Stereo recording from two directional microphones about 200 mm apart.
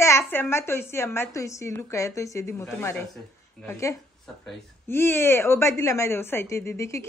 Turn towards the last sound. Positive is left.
turn(degrees=15)  # may be behind; listen again after turning